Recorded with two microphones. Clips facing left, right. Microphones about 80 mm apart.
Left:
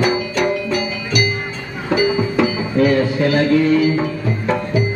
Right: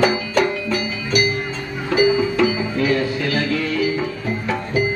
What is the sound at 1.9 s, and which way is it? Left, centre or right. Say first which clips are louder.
Music: even; left.